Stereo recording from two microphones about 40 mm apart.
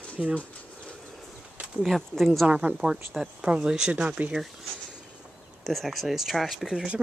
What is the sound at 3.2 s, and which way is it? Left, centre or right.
Speech, centre.